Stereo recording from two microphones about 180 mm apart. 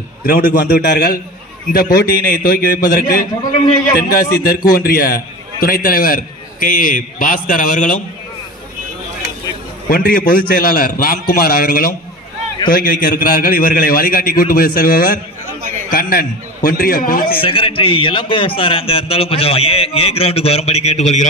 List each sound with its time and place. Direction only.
0.3 s a man's voice: 55° left (ahead or behind)
9.8 s a man's voice: 55° left (ahead or behind)
17.4 s a man's voice: 30° left (ahead or behind)